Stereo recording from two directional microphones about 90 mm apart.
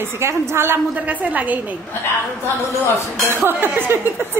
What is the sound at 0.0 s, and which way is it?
A woman's voice, 30° right (ahead or behind).